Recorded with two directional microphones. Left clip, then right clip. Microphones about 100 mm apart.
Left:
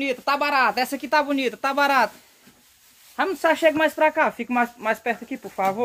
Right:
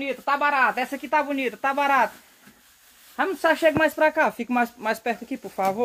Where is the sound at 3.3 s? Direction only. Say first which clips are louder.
Left 1 dB; centre (ahead or behind).